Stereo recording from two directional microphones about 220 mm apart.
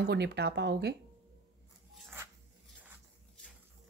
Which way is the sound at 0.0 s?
50° right (ahead or behind).